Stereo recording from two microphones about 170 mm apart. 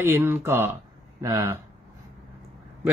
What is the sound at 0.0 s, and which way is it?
Speech, 15° right (ahead or behind).